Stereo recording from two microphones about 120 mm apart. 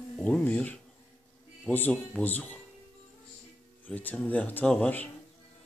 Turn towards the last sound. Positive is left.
turn(degrees=10)  # may be behind; listen again after turning